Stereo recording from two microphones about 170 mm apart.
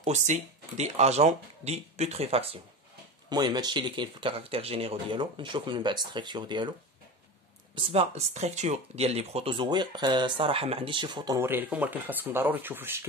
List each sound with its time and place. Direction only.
0.0 s speech: 45° right (ahead or behind)
3.3 s speech: 25° right (ahead or behind)
7.7 s speech: 35° right (ahead or behind); by 13.0 s 10° right (ahead or behind)